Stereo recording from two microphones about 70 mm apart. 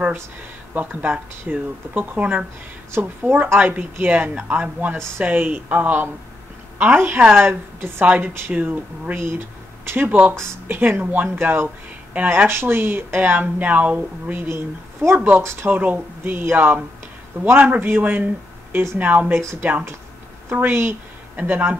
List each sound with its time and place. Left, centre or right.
0.7 s a woman's voice: right
4.3 s speech: centre
4.9 s a woman's voice: right
5.2 s speech: right
7.2 s speech: centre
7.4 s a woman's voice: right
8.5 s speech: right
15.4 s a woman's voice: right
15.7 s a woman's voice: right